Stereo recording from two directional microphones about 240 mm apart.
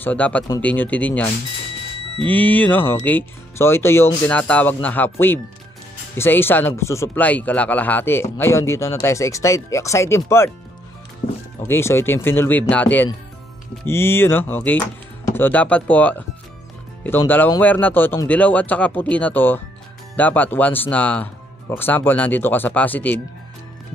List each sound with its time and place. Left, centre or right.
0.0 s speech: centre
6.1 s speech: centre
11.2 s speech: left
11.6 s speech: centre